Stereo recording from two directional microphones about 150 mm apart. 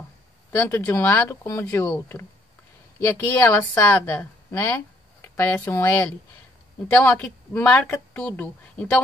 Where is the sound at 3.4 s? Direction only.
15° left (ahead or behind).